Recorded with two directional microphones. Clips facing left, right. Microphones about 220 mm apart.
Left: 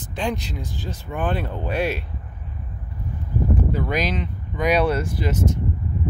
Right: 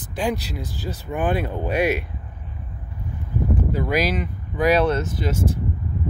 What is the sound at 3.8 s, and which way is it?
Speech, 10° right (ahead or behind).